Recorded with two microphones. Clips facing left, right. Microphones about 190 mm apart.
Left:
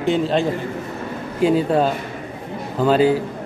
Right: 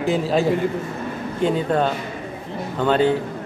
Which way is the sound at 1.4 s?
5° left (ahead or behind).